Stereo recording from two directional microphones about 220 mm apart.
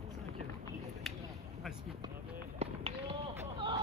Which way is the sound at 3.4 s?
20° right (ahead or behind).